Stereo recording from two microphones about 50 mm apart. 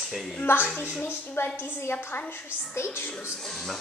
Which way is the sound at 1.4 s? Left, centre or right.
Left.